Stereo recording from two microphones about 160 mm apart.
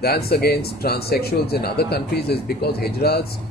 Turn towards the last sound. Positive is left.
turn(degrees=80)